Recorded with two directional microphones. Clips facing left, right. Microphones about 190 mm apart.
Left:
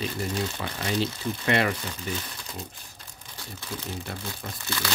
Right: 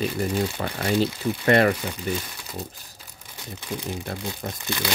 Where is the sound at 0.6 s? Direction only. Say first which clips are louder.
Right 5 dB; 45° right (ahead or behind).